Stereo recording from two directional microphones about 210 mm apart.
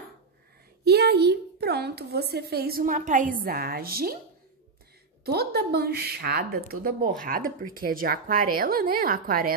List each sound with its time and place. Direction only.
0.8 s a sound: 50° right (ahead or behind)
3.4 s speech: 45° right (ahead or behind)
5.2 s speech: 50° right (ahead or behind)